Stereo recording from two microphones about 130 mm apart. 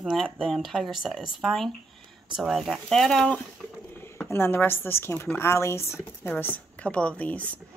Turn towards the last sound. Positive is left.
turn(degrees=10)  # may be behind; listen again after turning